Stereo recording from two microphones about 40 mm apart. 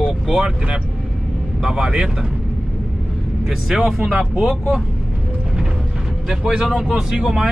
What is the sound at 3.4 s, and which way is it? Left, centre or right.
Speech, centre.